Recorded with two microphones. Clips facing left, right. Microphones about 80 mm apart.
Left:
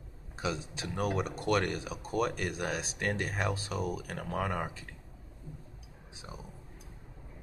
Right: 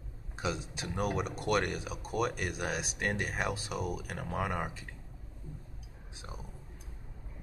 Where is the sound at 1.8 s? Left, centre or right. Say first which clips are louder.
Left 1 dB; left.